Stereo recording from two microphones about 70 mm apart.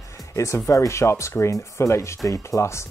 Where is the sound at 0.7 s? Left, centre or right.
Left.